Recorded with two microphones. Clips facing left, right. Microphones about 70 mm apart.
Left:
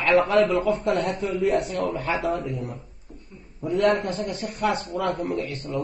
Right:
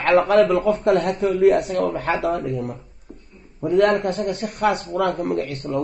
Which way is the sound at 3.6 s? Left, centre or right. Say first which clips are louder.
Right 4 dB; right.